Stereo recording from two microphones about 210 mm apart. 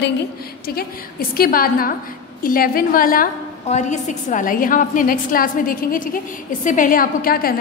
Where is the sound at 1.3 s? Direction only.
45° left (ahead or behind).